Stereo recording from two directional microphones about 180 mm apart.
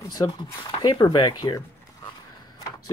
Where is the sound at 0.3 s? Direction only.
25° left (ahead or behind).